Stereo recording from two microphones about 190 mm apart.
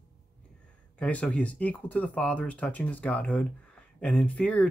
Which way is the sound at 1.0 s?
5° left (ahead or behind).